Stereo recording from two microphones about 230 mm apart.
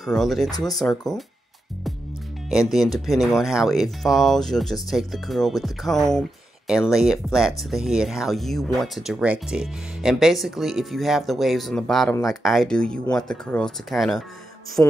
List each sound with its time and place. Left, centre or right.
0.1 s speech: centre
2.7 s speech: centre